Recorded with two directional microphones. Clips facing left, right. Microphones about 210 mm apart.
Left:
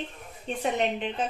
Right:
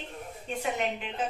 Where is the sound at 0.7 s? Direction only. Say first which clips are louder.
Left 5 dB; 35° left (ahead or behind).